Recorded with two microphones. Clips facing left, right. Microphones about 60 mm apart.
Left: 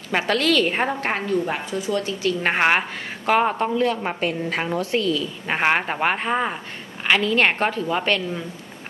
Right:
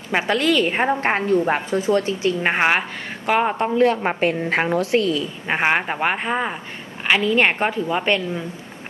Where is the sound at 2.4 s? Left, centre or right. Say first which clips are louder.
Left 1 dB; centre.